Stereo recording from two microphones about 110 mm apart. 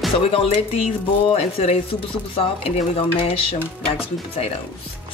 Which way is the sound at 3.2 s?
60° left (ahead or behind).